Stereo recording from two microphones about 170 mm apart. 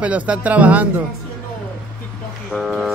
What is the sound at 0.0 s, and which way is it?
Speech, 10° right (ahead or behind).